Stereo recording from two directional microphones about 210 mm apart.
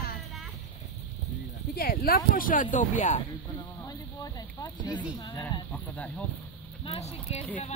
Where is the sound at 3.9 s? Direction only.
15° left (ahead or behind).